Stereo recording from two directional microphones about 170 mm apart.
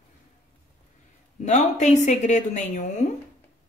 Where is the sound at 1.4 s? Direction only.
45° left (ahead or behind).